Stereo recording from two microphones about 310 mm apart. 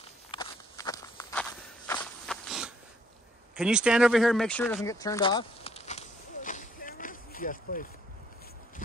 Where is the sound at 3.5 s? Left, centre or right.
Centre.